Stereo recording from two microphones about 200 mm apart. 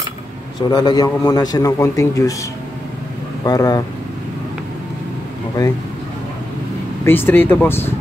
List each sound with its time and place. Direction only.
0.7 s a man's voice: 20° left (ahead or behind)
3.4 s a man's voice: 20° left (ahead or behind)
7.1 s speech: 10° left (ahead or behind)